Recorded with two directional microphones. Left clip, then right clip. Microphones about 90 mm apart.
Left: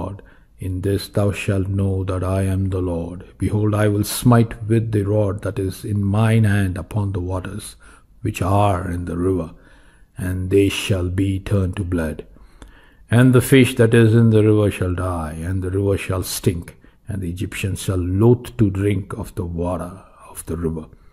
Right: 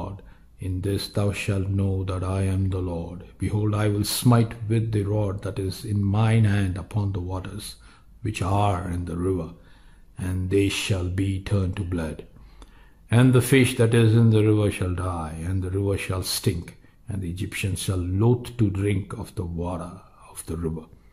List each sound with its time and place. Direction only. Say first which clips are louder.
0.6 s speech: left 6 dB; 40° left (ahead or behind)